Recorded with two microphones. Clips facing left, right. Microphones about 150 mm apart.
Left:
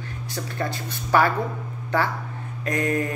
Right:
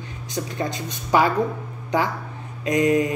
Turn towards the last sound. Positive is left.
turn(degrees=-15)  # may be behind; listen again after turning